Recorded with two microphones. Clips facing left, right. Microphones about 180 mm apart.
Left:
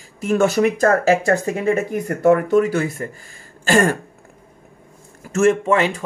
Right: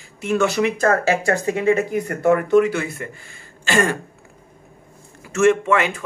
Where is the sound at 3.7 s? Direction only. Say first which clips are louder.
Left 3 dB; 45° left (ahead or behind).